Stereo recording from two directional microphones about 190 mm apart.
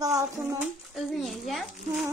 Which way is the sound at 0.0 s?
20° right (ahead or behind).